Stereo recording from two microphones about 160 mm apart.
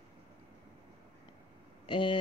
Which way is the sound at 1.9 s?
30° left (ahead or behind).